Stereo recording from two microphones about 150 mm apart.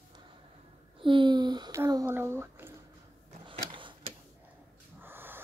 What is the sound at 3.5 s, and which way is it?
Sewing machine, 35° right (ahead or behind).